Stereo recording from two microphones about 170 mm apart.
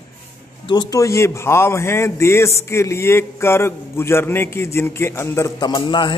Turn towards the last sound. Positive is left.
turn(degrees=30)  # may be behind; listen again after turning